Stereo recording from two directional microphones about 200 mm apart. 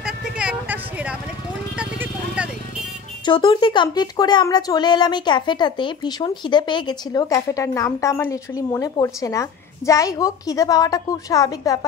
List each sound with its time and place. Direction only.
0.0 s a sound: 5° right (ahead or behind)
1.8 s clip-clop: 5° right (ahead or behind)
3.3 s speech: 25° left (ahead or behind)